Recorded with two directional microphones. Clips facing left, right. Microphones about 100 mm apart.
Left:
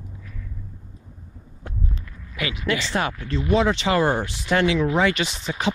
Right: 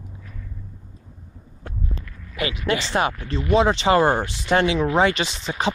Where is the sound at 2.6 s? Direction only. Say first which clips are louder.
Right 2 dB; 25° right (ahead or behind).